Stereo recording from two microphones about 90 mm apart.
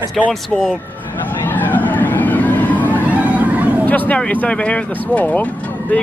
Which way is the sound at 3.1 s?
15° right (ahead or behind).